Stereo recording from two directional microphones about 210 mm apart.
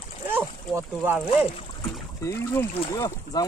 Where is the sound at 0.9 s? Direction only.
5° right (ahead or behind).